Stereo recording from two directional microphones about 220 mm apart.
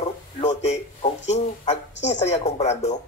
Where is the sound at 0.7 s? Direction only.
30° left (ahead or behind).